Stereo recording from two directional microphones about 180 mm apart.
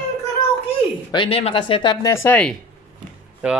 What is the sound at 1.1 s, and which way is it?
Speech, 30° left (ahead or behind).